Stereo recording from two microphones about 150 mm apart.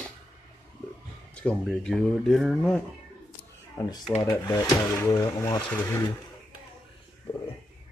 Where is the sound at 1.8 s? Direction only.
5° left (ahead or behind).